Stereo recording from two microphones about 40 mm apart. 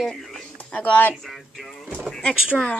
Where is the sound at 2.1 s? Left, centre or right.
Left.